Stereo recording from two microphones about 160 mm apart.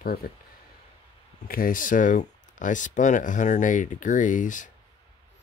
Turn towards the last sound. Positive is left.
turn(degrees=55)  # may be behind; listen again after turning